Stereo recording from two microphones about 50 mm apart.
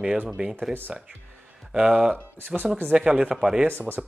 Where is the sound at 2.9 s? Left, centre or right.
Centre.